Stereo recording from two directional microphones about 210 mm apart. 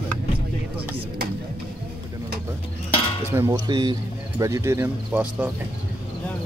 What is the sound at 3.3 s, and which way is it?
Speech, 15° right (ahead or behind).